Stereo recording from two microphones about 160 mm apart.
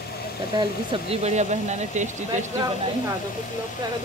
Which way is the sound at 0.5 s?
35° right (ahead or behind).